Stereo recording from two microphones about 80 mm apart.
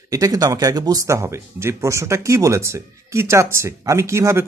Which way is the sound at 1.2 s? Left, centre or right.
Right.